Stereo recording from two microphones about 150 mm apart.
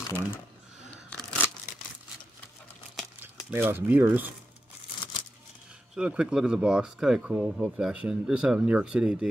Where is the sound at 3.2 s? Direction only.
15° right (ahead or behind).